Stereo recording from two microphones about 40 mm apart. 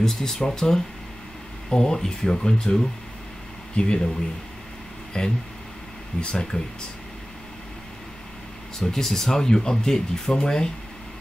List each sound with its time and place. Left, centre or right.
0.0 s speech: centre
5.1 s speech: left
6.5 s speech: left
8.7 s speech: centre